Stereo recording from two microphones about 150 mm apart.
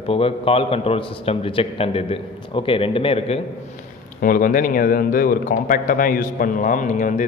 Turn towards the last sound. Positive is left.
turn(degrees=60)  # may be behind; listen again after turning